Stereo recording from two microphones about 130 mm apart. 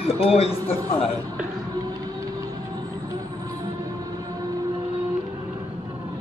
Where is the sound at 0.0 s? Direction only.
50° left (ahead or behind).